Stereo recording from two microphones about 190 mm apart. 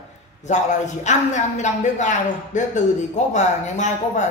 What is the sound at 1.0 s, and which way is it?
A woman's voice, 40° left (ahead or behind).